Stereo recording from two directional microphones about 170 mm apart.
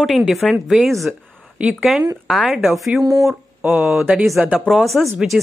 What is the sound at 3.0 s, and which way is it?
Speech, 20° right (ahead or behind).